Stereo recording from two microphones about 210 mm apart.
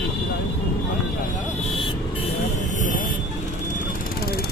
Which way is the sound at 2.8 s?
40° left (ahead or behind).